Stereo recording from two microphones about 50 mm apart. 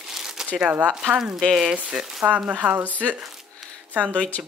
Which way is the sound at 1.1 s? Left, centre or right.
Centre.